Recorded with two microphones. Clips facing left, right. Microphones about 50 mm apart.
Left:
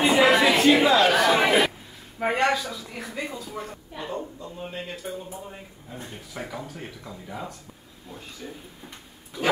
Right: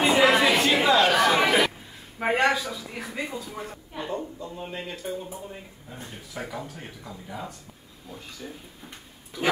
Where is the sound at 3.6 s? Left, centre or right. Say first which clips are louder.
Even; centre.